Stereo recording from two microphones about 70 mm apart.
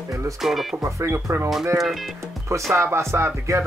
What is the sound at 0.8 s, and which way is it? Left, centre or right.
Music, right.